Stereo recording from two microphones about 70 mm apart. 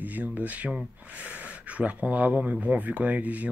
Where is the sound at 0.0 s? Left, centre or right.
Right.